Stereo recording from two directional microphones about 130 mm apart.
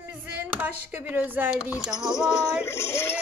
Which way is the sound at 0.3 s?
15° right (ahead or behind).